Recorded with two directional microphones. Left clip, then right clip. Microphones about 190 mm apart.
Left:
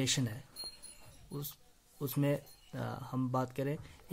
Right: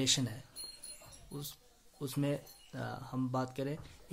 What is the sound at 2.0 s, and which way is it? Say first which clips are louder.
Speech: left 2 dB; 20° left (ahead or behind).